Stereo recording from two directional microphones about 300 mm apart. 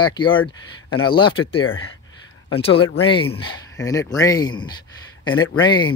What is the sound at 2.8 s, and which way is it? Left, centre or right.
Speech, left.